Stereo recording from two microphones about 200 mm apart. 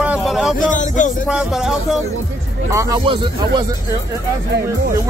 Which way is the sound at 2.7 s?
20° right (ahead or behind).